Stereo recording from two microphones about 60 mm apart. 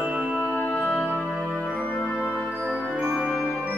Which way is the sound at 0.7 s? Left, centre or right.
Centre.